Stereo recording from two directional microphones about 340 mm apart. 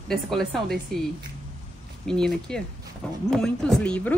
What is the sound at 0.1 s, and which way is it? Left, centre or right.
Speech, centre.